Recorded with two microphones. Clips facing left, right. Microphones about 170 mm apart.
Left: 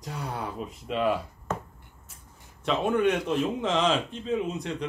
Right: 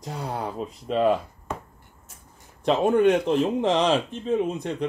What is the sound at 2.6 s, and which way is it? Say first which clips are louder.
Speech: right 5 dB; 40° right (ahead or behind).